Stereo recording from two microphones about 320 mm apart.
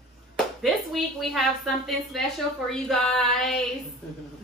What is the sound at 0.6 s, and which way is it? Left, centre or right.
A woman's voice, centre.